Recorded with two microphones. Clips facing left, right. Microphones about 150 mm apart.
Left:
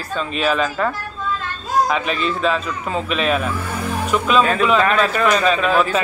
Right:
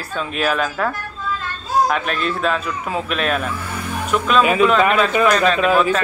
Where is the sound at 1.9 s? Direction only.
Centre (ahead or behind).